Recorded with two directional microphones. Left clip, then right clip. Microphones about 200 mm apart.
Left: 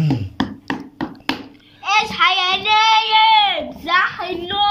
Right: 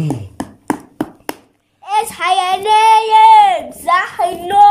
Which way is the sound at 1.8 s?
35° right (ahead or behind).